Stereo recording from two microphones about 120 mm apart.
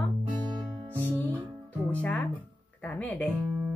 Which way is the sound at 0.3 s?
5° right (ahead or behind).